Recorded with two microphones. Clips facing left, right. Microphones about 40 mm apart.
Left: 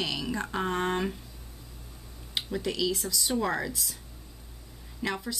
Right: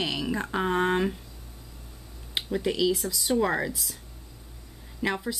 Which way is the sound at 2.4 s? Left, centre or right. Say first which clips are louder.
Right 4 dB; centre.